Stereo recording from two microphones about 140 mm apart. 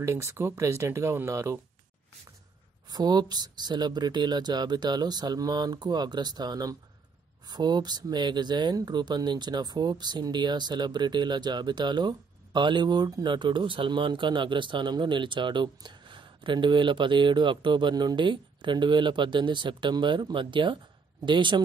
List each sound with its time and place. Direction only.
0.0 s speech: 20° right (ahead or behind)
2.9 s speech: 30° right (ahead or behind)